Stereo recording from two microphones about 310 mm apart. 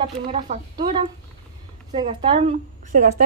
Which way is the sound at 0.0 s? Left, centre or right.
Centre.